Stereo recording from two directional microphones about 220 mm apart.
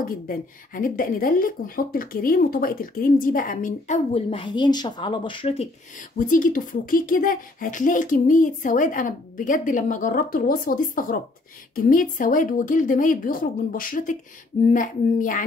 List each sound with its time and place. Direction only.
0.0 s speech: 40° left (ahead or behind)